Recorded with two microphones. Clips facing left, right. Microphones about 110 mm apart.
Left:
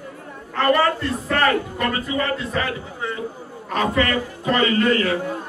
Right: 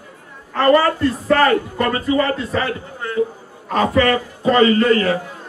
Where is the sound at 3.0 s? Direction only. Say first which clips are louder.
Right 2 dB; centre (ahead or behind).